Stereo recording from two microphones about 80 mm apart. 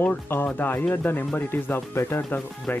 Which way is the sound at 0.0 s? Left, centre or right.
Left.